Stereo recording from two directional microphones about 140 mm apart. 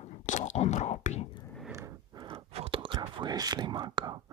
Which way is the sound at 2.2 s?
40° right (ahead or behind).